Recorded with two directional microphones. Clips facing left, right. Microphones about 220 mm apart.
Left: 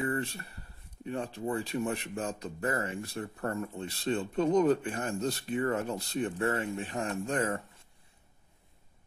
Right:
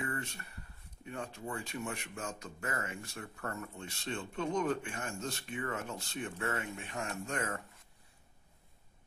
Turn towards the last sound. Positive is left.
turn(degrees=30)  # may be behind; listen again after turning